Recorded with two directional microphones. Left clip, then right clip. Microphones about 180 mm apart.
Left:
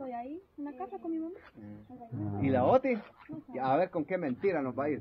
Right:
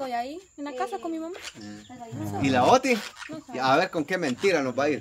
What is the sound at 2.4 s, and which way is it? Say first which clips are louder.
Speech: right 6 dB; 75° right (ahead or behind).